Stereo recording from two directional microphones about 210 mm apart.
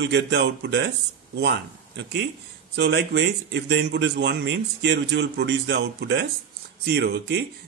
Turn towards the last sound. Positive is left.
turn(degrees=-50)  # may be behind; listen again after turning